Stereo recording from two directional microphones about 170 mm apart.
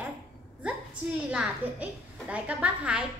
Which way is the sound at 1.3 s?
5° right (ahead or behind).